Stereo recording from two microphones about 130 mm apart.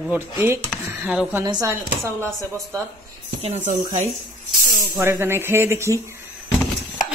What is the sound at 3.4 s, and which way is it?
Speech, 55° right (ahead or behind).